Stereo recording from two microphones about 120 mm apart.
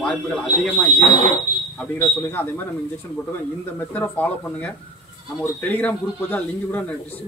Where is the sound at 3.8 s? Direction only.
15° left (ahead or behind).